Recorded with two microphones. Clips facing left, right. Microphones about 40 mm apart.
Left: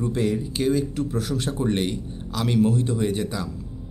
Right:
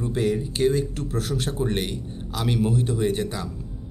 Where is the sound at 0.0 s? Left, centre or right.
Centre.